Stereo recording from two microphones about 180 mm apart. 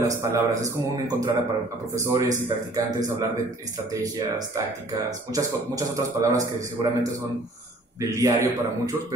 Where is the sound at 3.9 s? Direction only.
20° right (ahead or behind).